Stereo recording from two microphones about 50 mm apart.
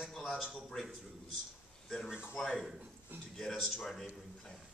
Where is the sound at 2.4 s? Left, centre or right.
Centre.